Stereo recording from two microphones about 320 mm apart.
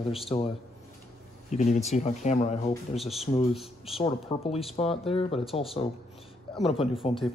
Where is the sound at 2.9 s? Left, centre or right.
Centre.